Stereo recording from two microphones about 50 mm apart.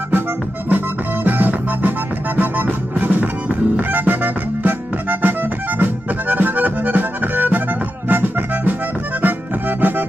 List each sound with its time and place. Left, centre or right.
0.7 s music: right
5.2 s accordion: right
8.1 s music: right
9.2 s accordion: right